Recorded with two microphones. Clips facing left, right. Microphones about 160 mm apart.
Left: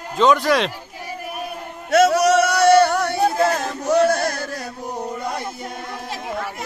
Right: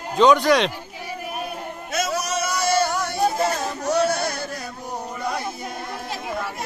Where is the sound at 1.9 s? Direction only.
70° left (ahead or behind); by 4.4 s 45° left (ahead or behind).